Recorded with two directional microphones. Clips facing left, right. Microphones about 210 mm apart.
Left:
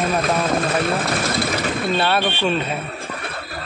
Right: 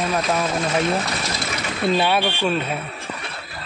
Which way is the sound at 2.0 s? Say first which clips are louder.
Even; 15° right (ahead or behind).